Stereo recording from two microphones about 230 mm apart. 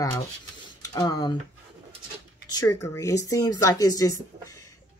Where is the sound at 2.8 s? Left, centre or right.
Centre.